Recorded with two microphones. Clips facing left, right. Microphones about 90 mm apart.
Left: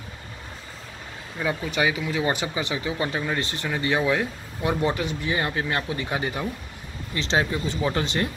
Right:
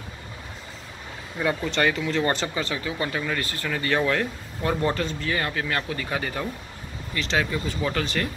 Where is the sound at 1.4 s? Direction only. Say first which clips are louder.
Right 1 dB; centre (ahead or behind); by 8.3 s 25° left (ahead or behind).